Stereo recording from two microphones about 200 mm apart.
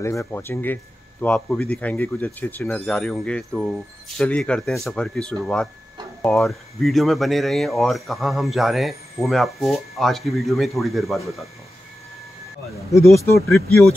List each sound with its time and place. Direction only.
0.0 s speech: 15° left (ahead or behind)
12.9 s speech: 15° left (ahead or behind)